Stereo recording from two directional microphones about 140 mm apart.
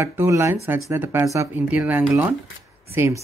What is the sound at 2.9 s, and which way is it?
Speech, 20° right (ahead or behind).